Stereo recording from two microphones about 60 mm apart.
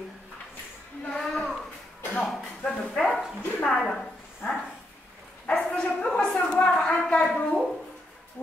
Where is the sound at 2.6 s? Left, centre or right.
Centre.